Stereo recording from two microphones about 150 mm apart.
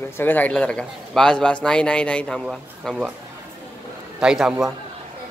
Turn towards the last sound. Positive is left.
turn(degrees=0)  # may be behind; listen again after turning